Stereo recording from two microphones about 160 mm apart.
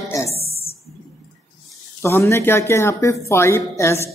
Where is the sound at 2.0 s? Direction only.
15° left (ahead or behind).